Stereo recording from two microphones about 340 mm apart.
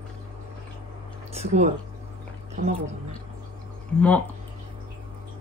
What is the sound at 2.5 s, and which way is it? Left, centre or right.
Speech, right.